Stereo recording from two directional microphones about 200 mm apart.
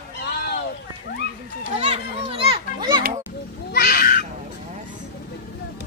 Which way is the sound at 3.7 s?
55° left (ahead or behind).